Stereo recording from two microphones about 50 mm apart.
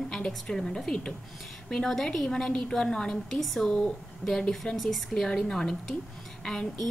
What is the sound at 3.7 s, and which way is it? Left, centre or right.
Speech, centre.